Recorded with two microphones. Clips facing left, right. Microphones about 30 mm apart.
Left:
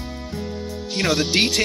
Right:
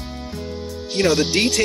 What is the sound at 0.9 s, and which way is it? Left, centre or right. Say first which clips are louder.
Speech: right 2 dB; centre.